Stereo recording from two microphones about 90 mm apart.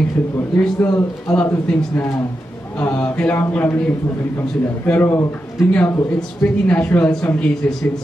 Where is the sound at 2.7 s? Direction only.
15° left (ahead or behind).